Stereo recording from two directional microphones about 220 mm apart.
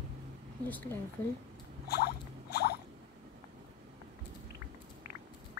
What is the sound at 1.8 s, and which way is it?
Rodents, 45° left (ahead or behind).